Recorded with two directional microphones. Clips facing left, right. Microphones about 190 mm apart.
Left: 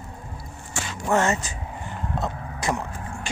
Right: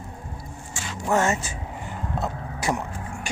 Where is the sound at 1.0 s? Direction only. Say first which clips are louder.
Even; 10° right (ahead or behind).